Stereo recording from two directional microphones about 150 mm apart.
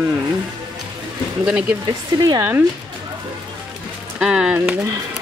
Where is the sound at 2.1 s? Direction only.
25° right (ahead or behind).